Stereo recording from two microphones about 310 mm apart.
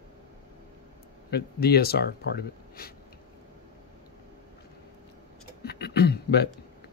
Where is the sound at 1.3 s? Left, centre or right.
Left.